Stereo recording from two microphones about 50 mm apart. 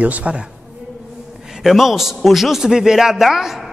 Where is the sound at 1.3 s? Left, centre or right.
Centre.